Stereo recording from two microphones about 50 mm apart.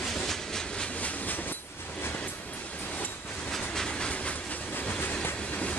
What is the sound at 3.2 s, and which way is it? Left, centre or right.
Train, left.